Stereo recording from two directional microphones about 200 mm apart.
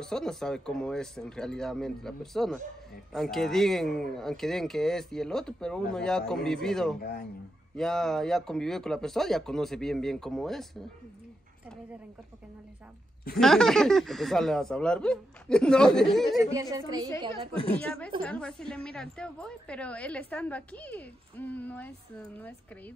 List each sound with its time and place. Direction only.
0.0 s speech: 5° left (ahead or behind)
7.0 s speech: 50° left (ahead or behind)
7.7 s speech: 5° left (ahead or behind)
13.4 s speech: centre (ahead or behind)
16.7 s a woman's voice: 20° right (ahead or behind)
17.6 s a woman's voice: 5° left (ahead or behind)